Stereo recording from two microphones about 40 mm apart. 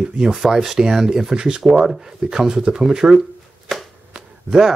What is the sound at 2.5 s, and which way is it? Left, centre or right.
Speech, centre.